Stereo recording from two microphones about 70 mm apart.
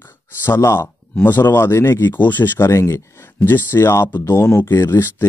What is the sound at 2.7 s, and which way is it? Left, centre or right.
Speech, left.